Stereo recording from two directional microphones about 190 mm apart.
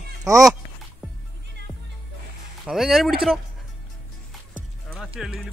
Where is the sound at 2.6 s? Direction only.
Centre (ahead or behind).